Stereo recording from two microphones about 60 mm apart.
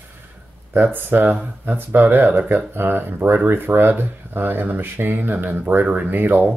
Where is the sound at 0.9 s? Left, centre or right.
Right.